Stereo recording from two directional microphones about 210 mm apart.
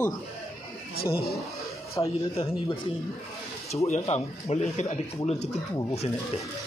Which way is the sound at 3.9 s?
30° left (ahead or behind).